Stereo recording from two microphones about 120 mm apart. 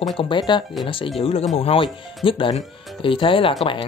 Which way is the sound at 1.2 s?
55° left (ahead or behind).